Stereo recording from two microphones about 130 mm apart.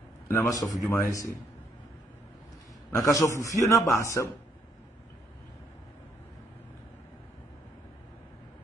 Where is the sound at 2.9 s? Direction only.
25° left (ahead or behind).